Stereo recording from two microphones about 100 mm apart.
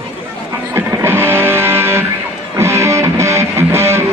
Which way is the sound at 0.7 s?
25° right (ahead or behind).